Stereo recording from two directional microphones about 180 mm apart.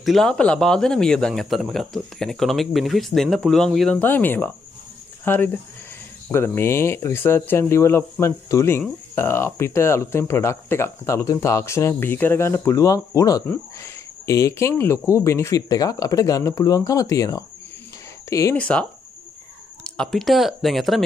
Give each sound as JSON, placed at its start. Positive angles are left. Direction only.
{"t": 0.0, "sound": "speech", "side_deg": 0}